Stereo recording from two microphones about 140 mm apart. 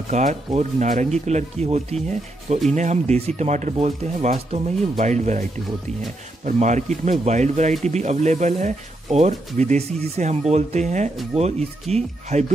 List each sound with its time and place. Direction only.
0.1 s speech: 55° right (ahead or behind)